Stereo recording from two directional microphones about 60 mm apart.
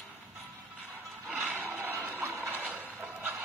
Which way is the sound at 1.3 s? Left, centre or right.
Right.